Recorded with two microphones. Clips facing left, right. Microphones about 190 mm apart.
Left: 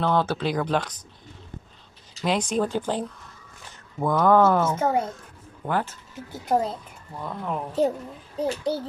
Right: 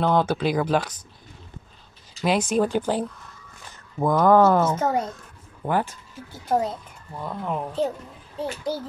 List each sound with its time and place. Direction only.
0.0 s speech: 15° right (ahead or behind)
2.2 s speech: 10° right (ahead or behind)
4.7 s speech: 10° left (ahead or behind)
5.7 s speech: 15° right (ahead or behind)
7.2 s speech: 5° right (ahead or behind)
8.4 s a child's voice: 30° left (ahead or behind)